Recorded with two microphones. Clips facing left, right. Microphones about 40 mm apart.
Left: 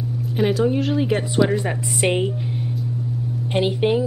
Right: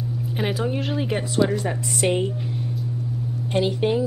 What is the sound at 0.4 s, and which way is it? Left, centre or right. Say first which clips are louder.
Speech: left 7 dB; centre.